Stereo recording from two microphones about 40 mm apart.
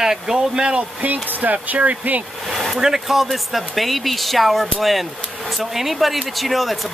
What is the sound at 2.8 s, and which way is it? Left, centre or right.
Speech, centre.